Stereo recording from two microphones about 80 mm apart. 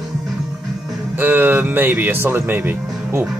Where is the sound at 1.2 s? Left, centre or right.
Right.